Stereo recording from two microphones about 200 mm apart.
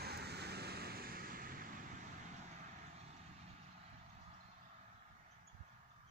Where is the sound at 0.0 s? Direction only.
55° right (ahead or behind).